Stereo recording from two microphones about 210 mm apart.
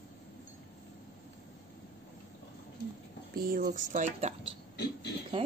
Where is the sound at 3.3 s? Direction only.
45° right (ahead or behind).